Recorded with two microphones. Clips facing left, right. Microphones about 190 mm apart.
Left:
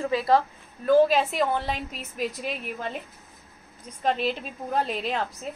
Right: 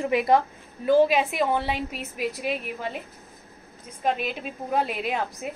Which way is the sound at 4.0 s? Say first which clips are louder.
Left 1 dB; 10° right (ahead or behind).